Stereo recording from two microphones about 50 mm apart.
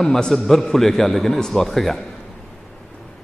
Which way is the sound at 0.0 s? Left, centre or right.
Centre.